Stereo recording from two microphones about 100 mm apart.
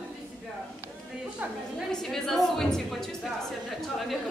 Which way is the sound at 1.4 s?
15° right (ahead or behind).